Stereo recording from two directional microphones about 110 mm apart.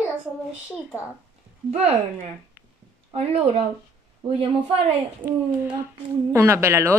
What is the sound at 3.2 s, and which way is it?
A woman's voice, 70° right (ahead or behind).